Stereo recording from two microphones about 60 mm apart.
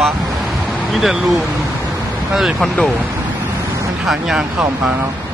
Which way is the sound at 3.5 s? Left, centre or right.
Right.